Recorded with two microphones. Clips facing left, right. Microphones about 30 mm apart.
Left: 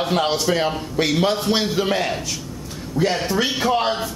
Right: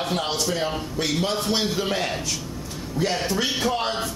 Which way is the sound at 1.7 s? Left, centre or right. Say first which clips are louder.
Left 4 dB; centre.